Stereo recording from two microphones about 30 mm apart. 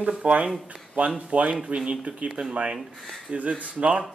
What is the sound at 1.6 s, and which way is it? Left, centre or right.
A man's voice, right.